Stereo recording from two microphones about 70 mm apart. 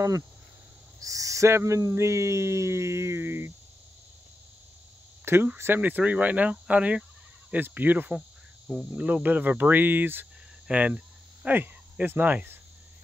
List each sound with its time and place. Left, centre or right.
1.0 s a sound: right
5.2 s cricket: right
8.2 s cricket: centre
11.4 s speech: right